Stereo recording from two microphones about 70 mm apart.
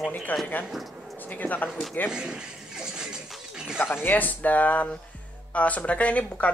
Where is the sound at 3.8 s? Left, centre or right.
Left.